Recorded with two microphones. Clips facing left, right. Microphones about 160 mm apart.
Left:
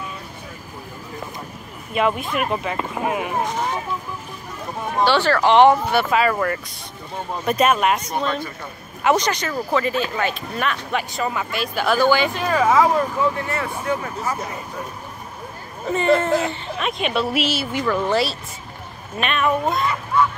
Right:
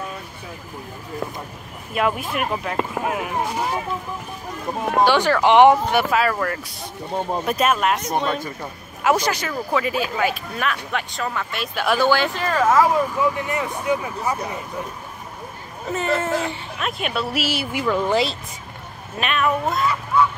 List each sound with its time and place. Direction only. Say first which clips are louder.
2.0 s speech: left 1 dB; centre (ahead or behind)
5.0 s speech: even; 15° right (ahead or behind)
6.1 s speech: left 2 dB; centre (ahead or behind)
12.0 s speech: left 1 dB; 10° left (ahead or behind)
13.4 s speech: right 1 dB; 15° right (ahead or behind)
15.9 s speech: left 4 dB; 5° right (ahead or behind)
17.5 s speech: even; 10° right (ahead or behind)
19.1 s speech: left 1 dB; centre (ahead or behind)